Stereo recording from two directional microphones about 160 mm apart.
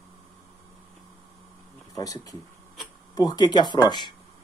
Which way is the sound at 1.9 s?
20° left (ahead or behind).